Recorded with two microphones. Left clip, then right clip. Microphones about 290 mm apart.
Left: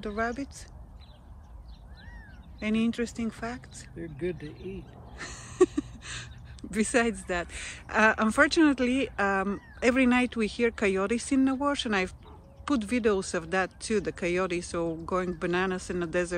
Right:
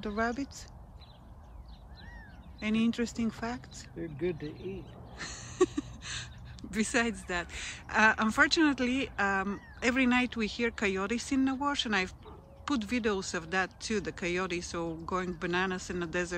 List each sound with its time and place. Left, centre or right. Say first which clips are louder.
0.0 s speech: left 1 dB; centre
2.6 s speech: left 2 dB; centre
4.0 s speech: even; right
5.1 s speech: left 1 dB; centre